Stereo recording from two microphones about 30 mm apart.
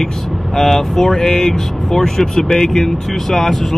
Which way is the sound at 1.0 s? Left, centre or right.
Centre.